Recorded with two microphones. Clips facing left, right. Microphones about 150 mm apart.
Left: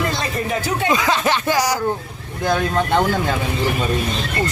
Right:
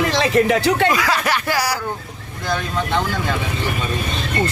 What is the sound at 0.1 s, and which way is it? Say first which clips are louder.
Speech: right 7 dB; 90° right.